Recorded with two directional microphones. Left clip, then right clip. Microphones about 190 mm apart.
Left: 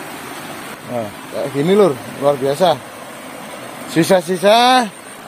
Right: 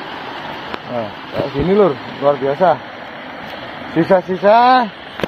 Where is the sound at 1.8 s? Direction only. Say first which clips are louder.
Right 1 dB; 35° left (ahead or behind).